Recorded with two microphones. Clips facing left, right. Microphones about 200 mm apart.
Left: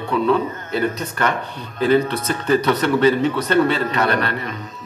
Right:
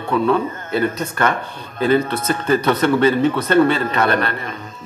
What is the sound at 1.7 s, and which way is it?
Speech, 50° right (ahead or behind).